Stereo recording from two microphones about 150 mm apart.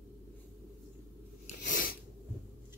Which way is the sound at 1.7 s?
75° left (ahead or behind).